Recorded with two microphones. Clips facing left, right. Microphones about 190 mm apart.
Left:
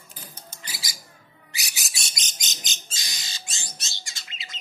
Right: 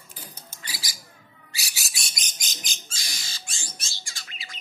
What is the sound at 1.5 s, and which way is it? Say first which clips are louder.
Bird: left 1 dB; 20° left (ahead or behind).